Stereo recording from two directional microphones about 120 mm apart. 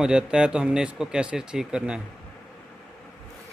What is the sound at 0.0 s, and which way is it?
A man's voice, 5° right (ahead or behind).